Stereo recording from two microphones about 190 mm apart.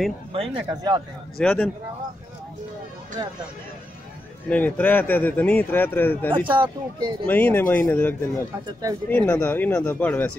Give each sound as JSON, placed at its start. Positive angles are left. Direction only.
{"t": 0.3, "sound": "speech", "side_deg": -25}
{"t": 1.4, "sound": "speech", "side_deg": 5}
{"t": 4.5, "sound": "speech", "side_deg": 5}
{"t": 6.5, "sound": "speech", "side_deg": -25}
{"t": 7.2, "sound": "speech", "side_deg": 10}